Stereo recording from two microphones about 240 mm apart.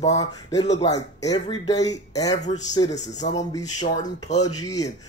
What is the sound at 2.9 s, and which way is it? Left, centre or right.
Speech, left.